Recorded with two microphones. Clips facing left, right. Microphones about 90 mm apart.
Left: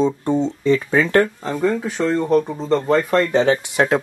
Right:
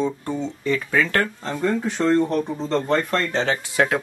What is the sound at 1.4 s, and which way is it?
Speech, 5° left (ahead or behind).